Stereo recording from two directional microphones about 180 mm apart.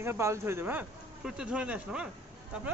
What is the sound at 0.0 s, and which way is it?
Speech, 15° right (ahead or behind).